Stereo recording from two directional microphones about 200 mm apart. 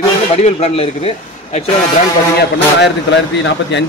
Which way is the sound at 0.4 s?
30° left (ahead or behind).